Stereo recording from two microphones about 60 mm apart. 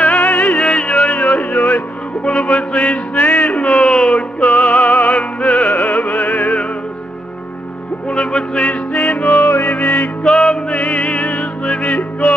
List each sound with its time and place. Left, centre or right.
0.0 s music: left
4.5 s music: left
8.1 s music: centre
9.3 s music: left
10.2 s music: centre
10.7 s music: left